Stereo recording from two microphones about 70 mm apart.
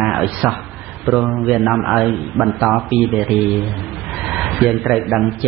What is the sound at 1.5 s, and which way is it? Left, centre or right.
A man's voice, centre.